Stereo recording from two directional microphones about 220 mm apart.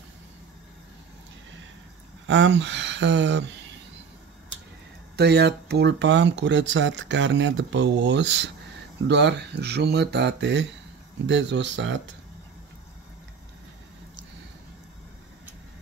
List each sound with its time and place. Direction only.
2.2 s speech: 55° right (ahead or behind)
5.1 s speech: 50° right (ahead or behind)